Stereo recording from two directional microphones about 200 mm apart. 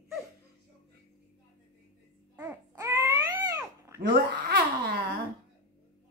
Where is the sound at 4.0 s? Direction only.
55° right (ahead or behind).